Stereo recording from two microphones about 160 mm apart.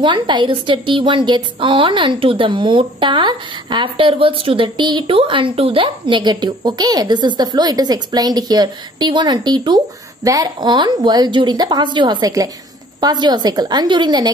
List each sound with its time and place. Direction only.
0.0 s a woman's voice: 30° right (ahead or behind)